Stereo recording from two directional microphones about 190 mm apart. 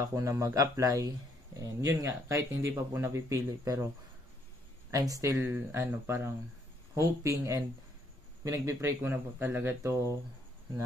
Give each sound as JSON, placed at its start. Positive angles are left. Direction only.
{"t": 0.0, "sound": "speech", "side_deg": -15}
{"t": 4.9, "sound": "speech", "side_deg": -15}